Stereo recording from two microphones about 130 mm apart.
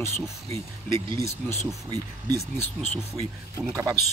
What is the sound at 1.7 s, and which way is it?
Speech, 25° right (ahead or behind).